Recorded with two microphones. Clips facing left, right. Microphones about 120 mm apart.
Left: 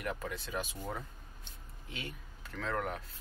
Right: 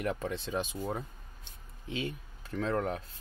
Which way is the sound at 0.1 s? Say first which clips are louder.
Right 5 dB; 25° right (ahead or behind).